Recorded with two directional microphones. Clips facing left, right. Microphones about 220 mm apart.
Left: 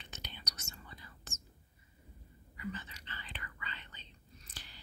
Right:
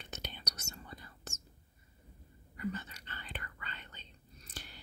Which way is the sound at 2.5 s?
45° right (ahead or behind).